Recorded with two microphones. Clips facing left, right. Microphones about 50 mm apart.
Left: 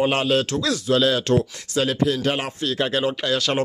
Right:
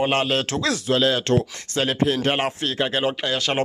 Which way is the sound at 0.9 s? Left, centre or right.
Right.